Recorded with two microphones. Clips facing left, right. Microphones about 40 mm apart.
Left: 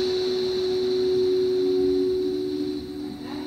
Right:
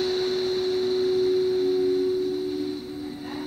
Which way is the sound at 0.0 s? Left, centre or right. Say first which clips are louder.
Left 1 dB; centre.